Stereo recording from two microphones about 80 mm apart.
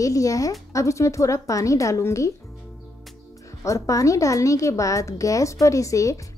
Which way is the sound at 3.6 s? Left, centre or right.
Left.